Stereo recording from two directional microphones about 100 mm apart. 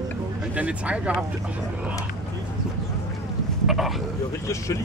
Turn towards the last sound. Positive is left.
turn(degrees=30)  # may be behind; listen again after turning